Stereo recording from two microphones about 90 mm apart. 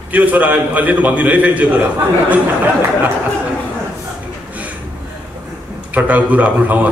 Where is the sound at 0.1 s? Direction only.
15° right (ahead or behind).